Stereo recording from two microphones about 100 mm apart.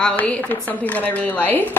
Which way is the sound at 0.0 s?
15° left (ahead or behind).